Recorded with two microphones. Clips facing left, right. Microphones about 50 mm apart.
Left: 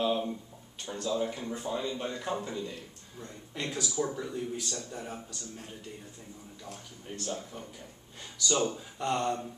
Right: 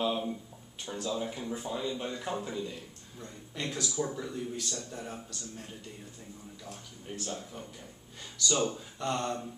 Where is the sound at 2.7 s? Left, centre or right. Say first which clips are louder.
Even; centre.